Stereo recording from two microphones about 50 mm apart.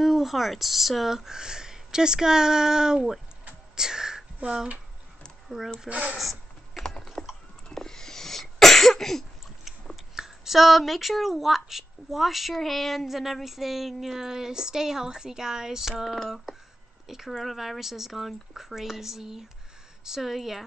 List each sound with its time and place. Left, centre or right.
0.0 s speech: centre
3.7 s whispering: centre
5.5 s speech: centre
5.9 s speech: right
6.1 s a sound: centre
6.8 s typing: centre
7.7 s cough: centre
10.1 s speech: centre